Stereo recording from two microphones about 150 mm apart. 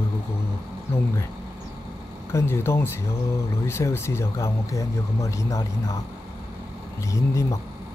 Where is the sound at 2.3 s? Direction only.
15° left (ahead or behind).